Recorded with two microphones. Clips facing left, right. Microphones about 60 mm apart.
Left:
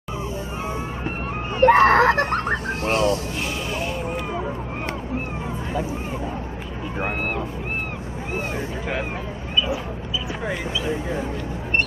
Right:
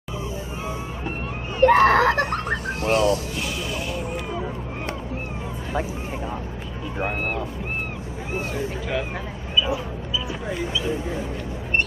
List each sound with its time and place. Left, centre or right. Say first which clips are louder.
1.6 s screaming: left 1 dB; left